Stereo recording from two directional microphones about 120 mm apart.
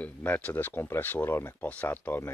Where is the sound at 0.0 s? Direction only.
10° left (ahead or behind).